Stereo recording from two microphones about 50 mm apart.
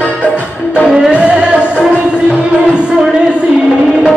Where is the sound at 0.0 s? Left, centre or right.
Left.